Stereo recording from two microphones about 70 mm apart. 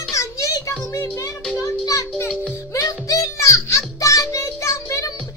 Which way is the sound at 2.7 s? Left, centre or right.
Left.